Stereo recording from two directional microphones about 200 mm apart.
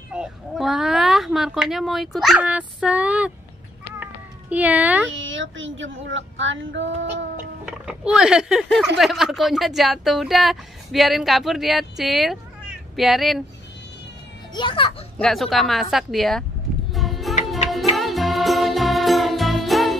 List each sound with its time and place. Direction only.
0.1 s speech: 5° right (ahead or behind)
3.8 s cat: 10° right (ahead or behind)
5.0 s speech: 70° right (ahead or behind)
7.6 s speech: 5° right (ahead or behind)
14.5 s a child's voice: 25° left (ahead or behind)
15.1 s speech: centre (ahead or behind)
16.9 s music: centre (ahead or behind)